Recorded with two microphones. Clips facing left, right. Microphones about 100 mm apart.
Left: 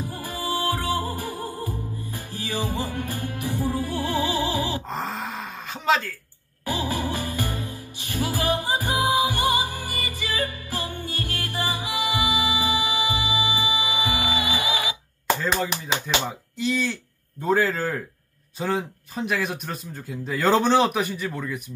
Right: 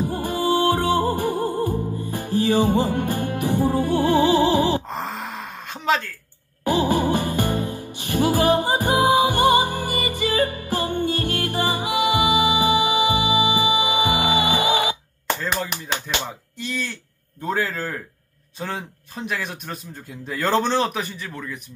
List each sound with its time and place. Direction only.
0.0 s music: 55° right (ahead or behind)
4.8 s a sound: centre (ahead or behind)
6.6 s music: 60° right (ahead or behind)
15.2 s speech: centre (ahead or behind)